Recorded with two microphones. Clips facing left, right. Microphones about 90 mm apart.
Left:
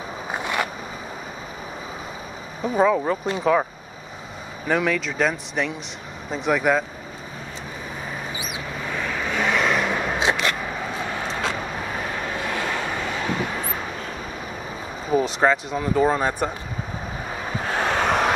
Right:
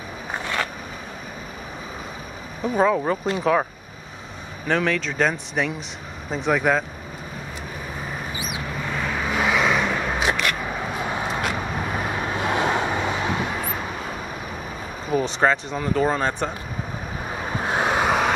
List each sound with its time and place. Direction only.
0.4 s a sound: 15° left (ahead or behind)
2.6 s speech: centre (ahead or behind)
4.6 s speech: 5° left (ahead or behind)
8.9 s vehicle: 5° right (ahead or behind)
10.1 s a sound: 25° left (ahead or behind)
12.4 s vehicle: 20° right (ahead or behind)
15.1 s speech: centre (ahead or behind)
17.6 s vehicle: 15° right (ahead or behind)